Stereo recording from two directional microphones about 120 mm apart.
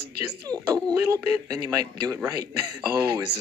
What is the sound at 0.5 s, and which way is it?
Speech, 30° right (ahead or behind).